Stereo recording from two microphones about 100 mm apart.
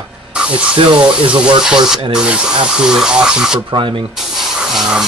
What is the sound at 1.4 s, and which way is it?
Speech, 5° right (ahead or behind).